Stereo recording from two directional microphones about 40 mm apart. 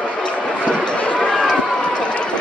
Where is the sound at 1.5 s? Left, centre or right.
Left.